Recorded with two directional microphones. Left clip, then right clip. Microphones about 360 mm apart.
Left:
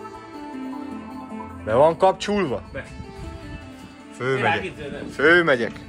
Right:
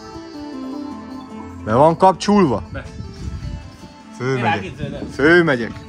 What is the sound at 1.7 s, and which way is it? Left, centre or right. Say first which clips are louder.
Speech: right 4 dB; right.